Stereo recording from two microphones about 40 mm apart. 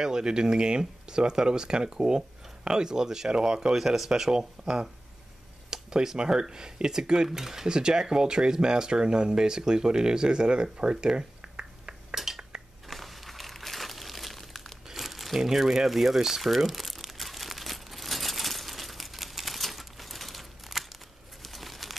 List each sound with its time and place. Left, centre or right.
0.0 s speech: centre
12.8 s crumpling: centre
21.4 s a sound: centre